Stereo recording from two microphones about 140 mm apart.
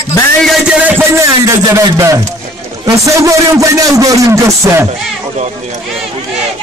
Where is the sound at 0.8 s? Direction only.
15° right (ahead or behind).